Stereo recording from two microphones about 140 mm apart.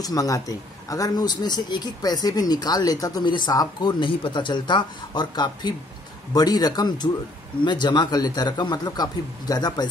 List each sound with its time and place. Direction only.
0.0 s speech: 25° left (ahead or behind)